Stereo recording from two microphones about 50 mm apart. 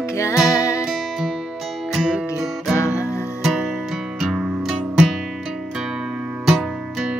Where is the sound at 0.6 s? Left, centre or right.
Left.